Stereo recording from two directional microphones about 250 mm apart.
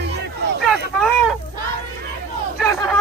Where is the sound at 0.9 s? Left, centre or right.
Centre.